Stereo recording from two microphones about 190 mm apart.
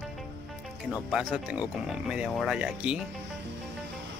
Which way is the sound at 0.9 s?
Centre (ahead or behind).